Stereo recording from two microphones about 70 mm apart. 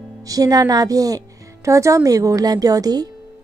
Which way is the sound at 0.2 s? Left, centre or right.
Right.